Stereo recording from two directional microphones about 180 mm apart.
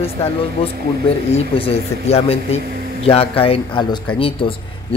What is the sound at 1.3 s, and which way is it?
Speech, 35° left (ahead or behind).